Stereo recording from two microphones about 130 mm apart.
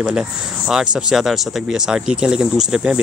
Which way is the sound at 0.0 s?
5° right (ahead or behind).